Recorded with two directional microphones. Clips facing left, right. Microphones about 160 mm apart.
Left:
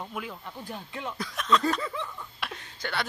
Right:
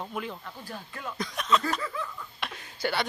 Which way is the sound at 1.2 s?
Centre (ahead or behind).